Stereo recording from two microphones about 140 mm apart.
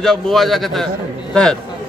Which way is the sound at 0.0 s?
5° left (ahead or behind).